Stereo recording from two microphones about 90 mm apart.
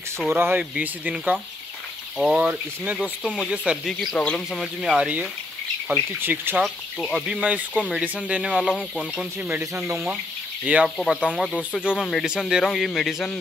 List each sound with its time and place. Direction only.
0.3 s speech: 25° right (ahead or behind); by 4.9 s centre (ahead or behind)
4.9 s speech: 10° right (ahead or behind)
6.6 s speech: centre (ahead or behind)
7.2 s speech: 15° right (ahead or behind)
11.2 s speech: centre (ahead or behind)